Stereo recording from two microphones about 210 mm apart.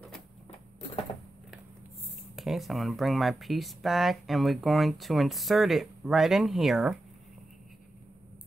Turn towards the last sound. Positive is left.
turn(degrees=0)  # may be behind; listen again after turning